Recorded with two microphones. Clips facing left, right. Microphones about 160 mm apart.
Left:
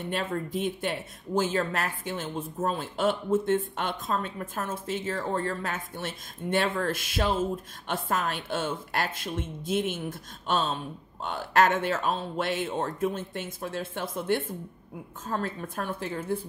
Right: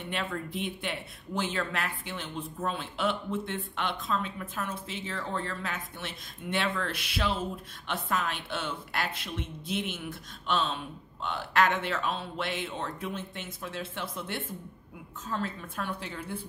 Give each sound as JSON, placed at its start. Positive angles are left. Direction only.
{"t": 0.1, "sound": "speech", "side_deg": 40}